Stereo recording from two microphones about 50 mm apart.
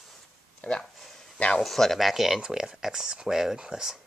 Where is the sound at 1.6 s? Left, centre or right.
Centre.